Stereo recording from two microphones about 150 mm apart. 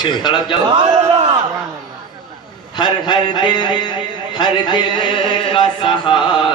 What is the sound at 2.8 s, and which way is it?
Chant, 30° left (ahead or behind).